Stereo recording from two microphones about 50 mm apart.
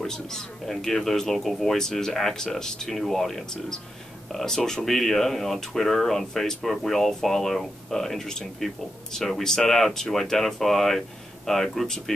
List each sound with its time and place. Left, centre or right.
0.0 s speech: centre
4.8 s speech: centre